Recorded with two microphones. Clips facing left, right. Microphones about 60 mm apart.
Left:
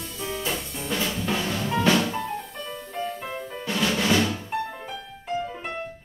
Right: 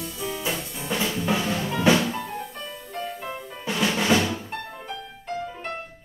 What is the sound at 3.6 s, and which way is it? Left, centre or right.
Drum, centre.